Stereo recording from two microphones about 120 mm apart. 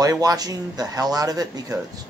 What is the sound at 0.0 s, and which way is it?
Speech, 30° right (ahead or behind).